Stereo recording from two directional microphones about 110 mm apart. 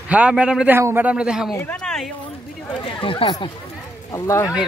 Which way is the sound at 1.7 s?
5° left (ahead or behind).